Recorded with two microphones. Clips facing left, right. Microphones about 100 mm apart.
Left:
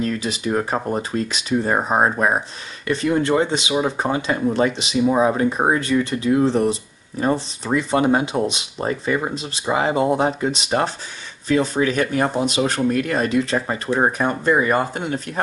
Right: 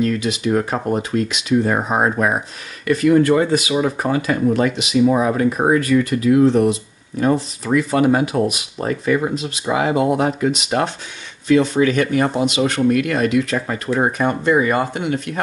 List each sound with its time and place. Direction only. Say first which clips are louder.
0.0 s speech: right 4 dB; 35° left (ahead or behind)
14.1 s speech: right 2 dB; 40° left (ahead or behind)